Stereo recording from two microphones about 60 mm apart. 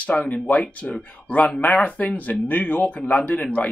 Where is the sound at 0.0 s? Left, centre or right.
Left.